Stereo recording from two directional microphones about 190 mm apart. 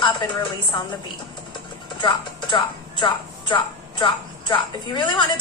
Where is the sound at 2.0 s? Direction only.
25° left (ahead or behind).